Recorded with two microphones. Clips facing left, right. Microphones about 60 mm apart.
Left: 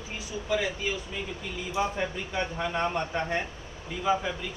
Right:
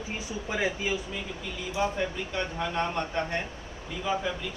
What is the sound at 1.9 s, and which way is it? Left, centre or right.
A man's voice, centre.